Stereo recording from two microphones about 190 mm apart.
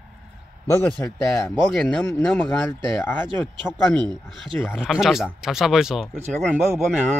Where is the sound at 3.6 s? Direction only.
25° right (ahead or behind).